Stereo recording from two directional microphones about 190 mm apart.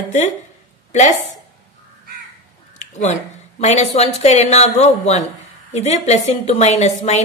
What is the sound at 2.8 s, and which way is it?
A woman's voice, 35° left (ahead or behind).